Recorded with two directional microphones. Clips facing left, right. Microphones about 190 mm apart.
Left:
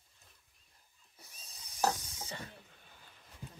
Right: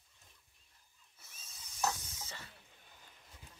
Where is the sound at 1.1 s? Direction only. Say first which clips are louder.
Left 3 dB; 35° left (ahead or behind).